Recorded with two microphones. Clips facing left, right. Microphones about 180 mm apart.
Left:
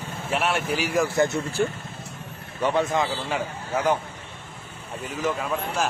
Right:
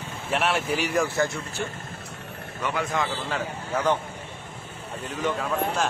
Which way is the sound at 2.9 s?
20° left (ahead or behind).